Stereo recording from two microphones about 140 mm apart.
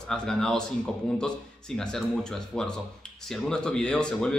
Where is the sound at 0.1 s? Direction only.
5° left (ahead or behind).